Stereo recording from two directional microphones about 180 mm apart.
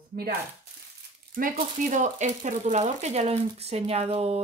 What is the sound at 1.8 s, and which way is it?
Speech, 45° right (ahead or behind).